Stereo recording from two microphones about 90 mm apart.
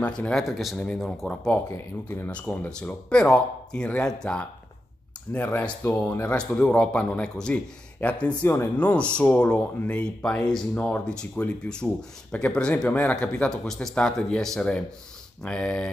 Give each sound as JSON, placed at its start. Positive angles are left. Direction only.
{"t": 0.0, "sound": "speech", "side_deg": 10}
{"t": 2.0, "sound": "speech", "side_deg": 20}
{"t": 2.4, "sound": "speech", "side_deg": 10}
{"t": 6.3, "sound": "speech", "side_deg": 10}